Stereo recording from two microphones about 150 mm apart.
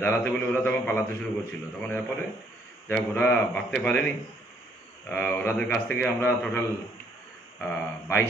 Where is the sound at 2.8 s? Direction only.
15° left (ahead or behind).